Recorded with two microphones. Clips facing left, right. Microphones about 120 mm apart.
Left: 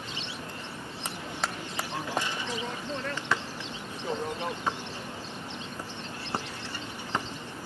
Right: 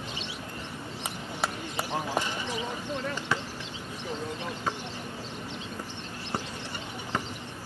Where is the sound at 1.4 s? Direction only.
15° right (ahead or behind).